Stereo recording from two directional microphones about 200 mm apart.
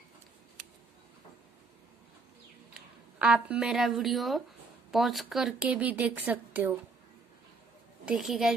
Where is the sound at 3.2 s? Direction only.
5° right (ahead or behind).